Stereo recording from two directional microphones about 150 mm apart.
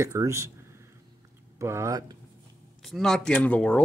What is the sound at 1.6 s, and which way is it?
Speech, 20° right (ahead or behind).